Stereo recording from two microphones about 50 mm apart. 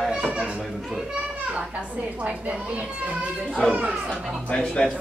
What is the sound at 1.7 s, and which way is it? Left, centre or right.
A woman's voice, right.